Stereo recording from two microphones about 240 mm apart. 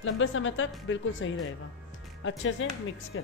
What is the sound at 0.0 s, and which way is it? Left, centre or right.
A woman's voice, left.